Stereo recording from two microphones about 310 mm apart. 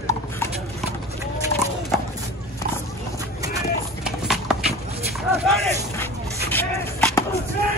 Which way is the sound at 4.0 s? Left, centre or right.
Centre.